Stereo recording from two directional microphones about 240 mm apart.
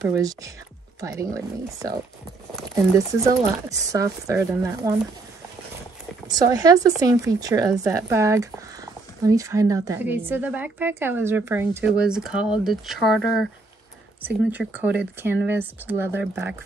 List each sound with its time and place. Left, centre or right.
0.0 s speech: centre
6.2 s speech: centre